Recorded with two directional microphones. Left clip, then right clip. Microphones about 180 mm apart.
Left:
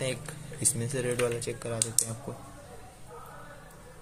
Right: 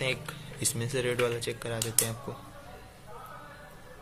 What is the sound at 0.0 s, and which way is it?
Speech, 10° left (ahead or behind).